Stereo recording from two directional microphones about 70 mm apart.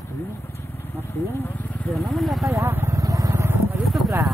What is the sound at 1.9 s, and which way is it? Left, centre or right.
Vehicle, centre.